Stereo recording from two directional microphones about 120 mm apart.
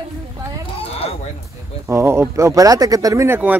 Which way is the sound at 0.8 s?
55° left (ahead or behind).